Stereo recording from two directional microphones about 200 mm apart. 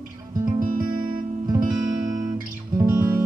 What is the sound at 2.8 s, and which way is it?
Music, 15° right (ahead or behind).